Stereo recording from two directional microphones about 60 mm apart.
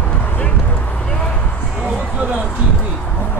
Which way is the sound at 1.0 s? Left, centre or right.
Centre.